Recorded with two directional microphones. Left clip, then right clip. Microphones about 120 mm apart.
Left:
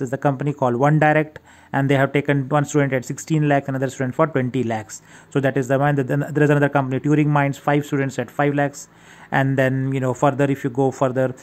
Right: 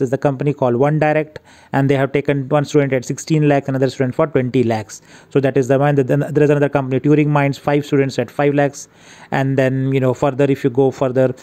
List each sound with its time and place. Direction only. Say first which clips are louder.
0.0 s speech: right 5 dB; 35° right (ahead or behind)